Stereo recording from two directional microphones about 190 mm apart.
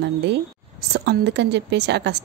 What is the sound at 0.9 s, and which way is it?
A woman's voice, 60° right (ahead or behind).